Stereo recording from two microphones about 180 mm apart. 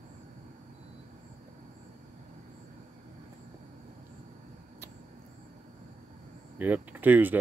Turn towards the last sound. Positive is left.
turn(degrees=-10)  # may be behind; listen again after turning